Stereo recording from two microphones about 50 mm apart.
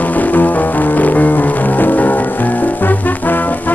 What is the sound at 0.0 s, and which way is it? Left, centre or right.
Music, left.